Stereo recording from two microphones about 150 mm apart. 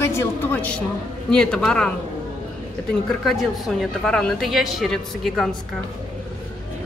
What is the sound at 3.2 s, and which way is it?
A woman's voice, centre (ahead or behind).